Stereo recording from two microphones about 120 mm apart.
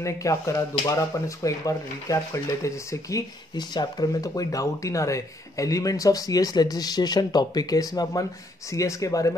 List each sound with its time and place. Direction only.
0.0 s speech: 25° left (ahead or behind)